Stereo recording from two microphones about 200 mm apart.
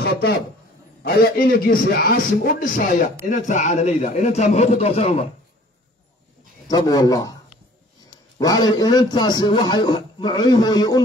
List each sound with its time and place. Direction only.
0.0 s a man's voice: 55° left (ahead or behind); by 5.2 s 35° left (ahead or behind)
6.7 s a man's voice: 20° left (ahead or behind)
8.4 s a man's voice: 20° left (ahead or behind)